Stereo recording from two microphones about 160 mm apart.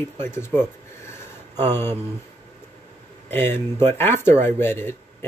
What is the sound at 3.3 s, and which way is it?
Speech, 15° left (ahead or behind).